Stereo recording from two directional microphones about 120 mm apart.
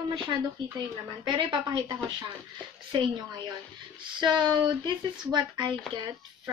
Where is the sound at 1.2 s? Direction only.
45° right (ahead or behind).